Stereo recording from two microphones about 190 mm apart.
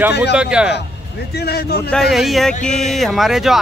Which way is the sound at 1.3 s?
55° left (ahead or behind).